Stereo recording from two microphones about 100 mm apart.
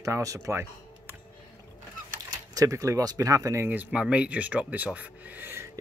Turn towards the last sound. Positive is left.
turn(degrees=-25)  # may be behind; listen again after turning